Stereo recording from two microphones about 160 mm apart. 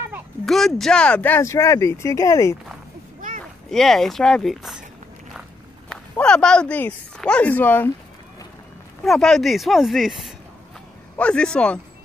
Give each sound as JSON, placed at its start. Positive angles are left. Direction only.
{"t": 0.5, "sound": "speech", "side_deg": 0}
{"t": 3.7, "sound": "speech", "side_deg": 0}
{"t": 5.9, "sound": "speech", "side_deg": 5}
{"t": 9.0, "sound": "speech", "side_deg": 0}
{"t": 11.1, "sound": "speech", "side_deg": 5}